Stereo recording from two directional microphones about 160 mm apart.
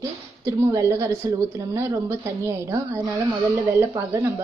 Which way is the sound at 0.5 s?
20° right (ahead or behind).